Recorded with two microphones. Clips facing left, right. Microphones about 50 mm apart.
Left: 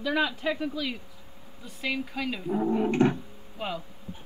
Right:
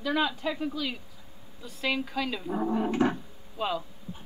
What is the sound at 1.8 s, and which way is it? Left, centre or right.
Speech, centre.